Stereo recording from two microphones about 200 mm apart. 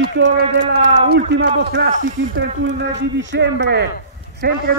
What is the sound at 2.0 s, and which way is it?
A man's voice, 70° right (ahead or behind).